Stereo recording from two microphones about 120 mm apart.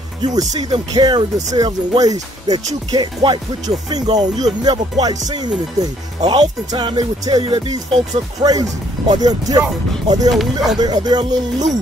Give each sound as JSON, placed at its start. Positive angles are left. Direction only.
{"t": 0.2, "sound": "speech", "side_deg": -30}
{"t": 10.3, "sound": "speech", "side_deg": 0}
{"t": 10.8, "sound": "speech", "side_deg": -35}